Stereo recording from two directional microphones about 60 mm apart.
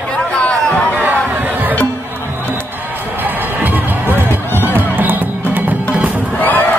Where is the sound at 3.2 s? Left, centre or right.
Right.